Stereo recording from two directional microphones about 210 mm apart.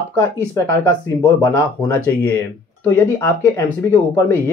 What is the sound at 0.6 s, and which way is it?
Speech, 15° left (ahead or behind).